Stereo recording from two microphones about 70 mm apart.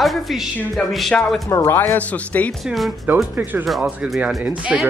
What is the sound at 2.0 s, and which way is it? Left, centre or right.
Speech, left.